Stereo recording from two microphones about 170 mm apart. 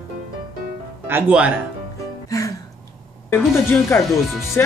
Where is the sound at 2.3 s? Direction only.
20° left (ahead or behind).